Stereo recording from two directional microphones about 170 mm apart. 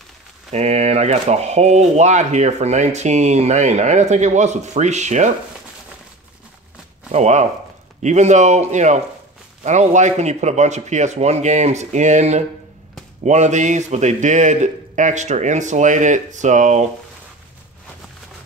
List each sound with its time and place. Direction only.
0.5 s speech: 40° right (ahead or behind)
7.1 s speech: 40° right (ahead or behind)